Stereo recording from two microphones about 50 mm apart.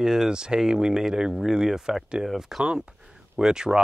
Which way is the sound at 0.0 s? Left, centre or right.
Centre.